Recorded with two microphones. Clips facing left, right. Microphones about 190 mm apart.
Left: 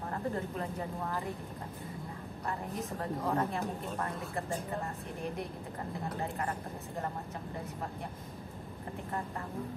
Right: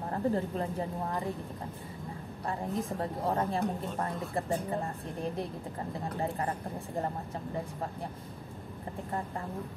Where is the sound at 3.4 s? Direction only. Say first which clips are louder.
Right 3 dB; 30° right (ahead or behind).